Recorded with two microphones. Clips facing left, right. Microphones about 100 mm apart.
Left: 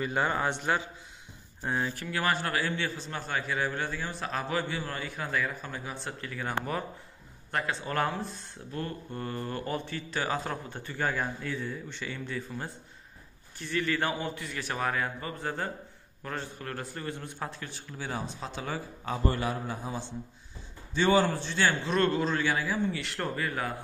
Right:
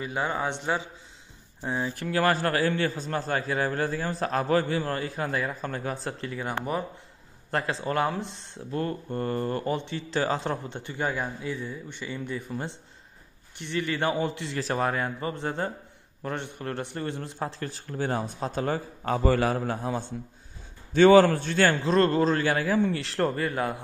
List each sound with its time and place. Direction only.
0.0 s speech: 5° right (ahead or behind)
0.5 s speech: 20° right (ahead or behind)
2.1 s a man's voice: 40° right (ahead or behind)
5.7 s a man's voice: 50° right (ahead or behind)
6.2 s speech: 20° right (ahead or behind)
7.8 s a man's voice: 30° right (ahead or behind)
17.6 s a man's voice: 40° right (ahead or behind)
19.0 s a man's voice: 75° right (ahead or behind); by 22.9 s 55° right (ahead or behind)
22.9 s a man's voice: 35° right (ahead or behind)